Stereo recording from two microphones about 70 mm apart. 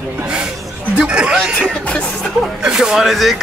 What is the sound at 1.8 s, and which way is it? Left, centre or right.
Speech, centre.